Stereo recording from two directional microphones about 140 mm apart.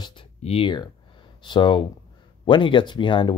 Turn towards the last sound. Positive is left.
turn(degrees=35)  # may be behind; listen again after turning